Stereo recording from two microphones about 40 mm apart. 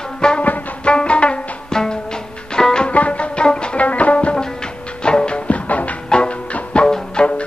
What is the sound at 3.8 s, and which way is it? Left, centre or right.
Music, left.